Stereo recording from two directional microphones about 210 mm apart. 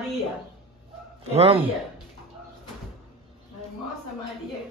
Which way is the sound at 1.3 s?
25° right (ahead or behind).